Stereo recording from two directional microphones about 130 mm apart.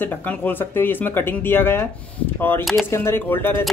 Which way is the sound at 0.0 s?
15° left (ahead or behind).